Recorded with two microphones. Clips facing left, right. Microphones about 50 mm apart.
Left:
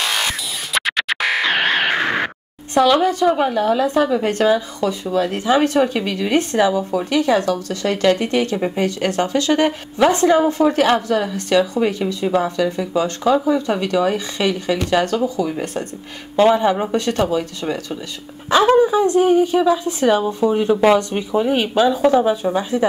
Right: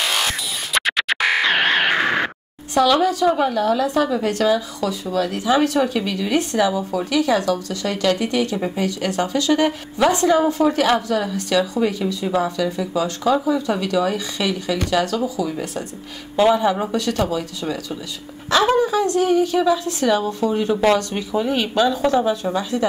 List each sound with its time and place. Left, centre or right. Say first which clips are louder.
0.7 s music: even; centre
2.8 s a woman's voice: left 2 dB; left
16.4 s speech: left 1 dB; left
16.9 s a woman's voice: left 3 dB; left
18.8 s speech: left 4 dB; centre
21.2 s speech: left 3 dB; left
22.5 s speech: left 3 dB; left